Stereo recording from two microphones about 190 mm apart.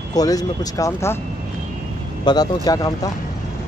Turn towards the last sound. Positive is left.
turn(degrees=20)  # may be behind; listen again after turning